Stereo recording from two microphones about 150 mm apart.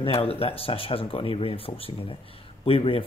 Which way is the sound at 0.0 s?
40° left (ahead or behind).